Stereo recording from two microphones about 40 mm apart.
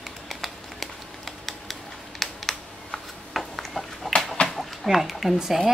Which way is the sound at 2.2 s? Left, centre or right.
Centre.